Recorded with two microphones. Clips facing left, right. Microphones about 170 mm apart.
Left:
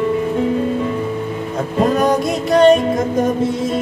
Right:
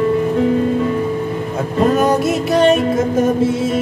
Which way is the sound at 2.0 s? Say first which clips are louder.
Right 1 dB; 5° right (ahead or behind).